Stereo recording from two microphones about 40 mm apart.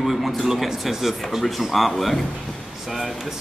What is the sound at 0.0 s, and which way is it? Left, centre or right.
Speech, centre.